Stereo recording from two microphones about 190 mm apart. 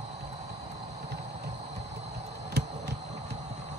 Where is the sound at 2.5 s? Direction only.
60° right (ahead or behind).